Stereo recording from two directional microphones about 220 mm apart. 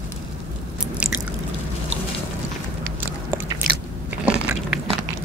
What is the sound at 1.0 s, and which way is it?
Biting, 5° right (ahead or behind).